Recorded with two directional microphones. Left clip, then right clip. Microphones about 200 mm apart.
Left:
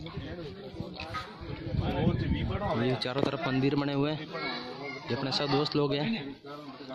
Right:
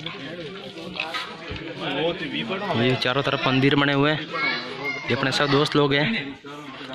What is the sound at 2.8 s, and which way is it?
A man's voice, 5° left (ahead or behind).